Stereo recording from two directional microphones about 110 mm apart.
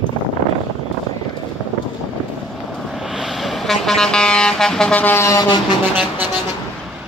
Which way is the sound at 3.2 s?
Centre (ahead or behind).